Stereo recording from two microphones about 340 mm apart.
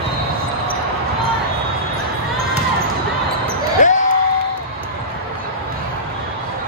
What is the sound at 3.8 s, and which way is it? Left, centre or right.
Basketball bounce, left.